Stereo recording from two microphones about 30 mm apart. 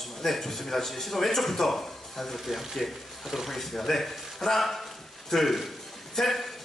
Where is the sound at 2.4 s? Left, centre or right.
Centre.